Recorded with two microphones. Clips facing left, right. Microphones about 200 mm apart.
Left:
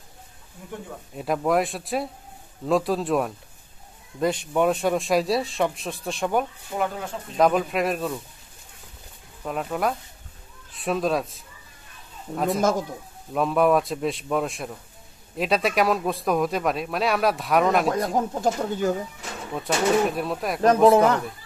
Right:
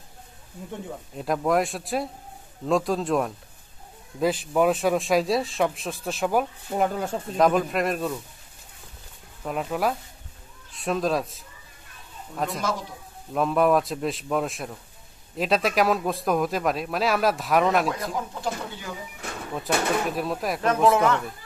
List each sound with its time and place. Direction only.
1.1 s speech: centre (ahead or behind)
6.8 s speech: 40° right (ahead or behind)
7.3 s speech: centre (ahead or behind)
9.4 s speech: centre (ahead or behind)
12.5 s speech: 45° left (ahead or behind)
13.3 s speech: centre (ahead or behind)
18.1 s speech: 45° left (ahead or behind)
19.5 s speech: centre (ahead or behind)
20.9 s a man's voice: 40° left (ahead or behind)